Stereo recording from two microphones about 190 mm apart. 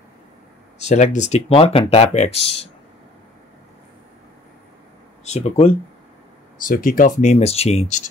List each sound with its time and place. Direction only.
0.7 s speech: 35° left (ahead or behind)
5.2 s speech: 35° left (ahead or behind)
6.6 s speech: 45° left (ahead or behind)